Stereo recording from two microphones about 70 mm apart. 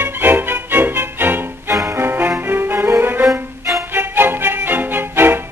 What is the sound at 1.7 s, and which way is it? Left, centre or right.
Music, right.